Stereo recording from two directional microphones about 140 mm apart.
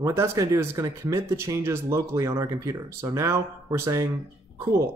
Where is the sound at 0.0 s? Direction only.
20° right (ahead or behind).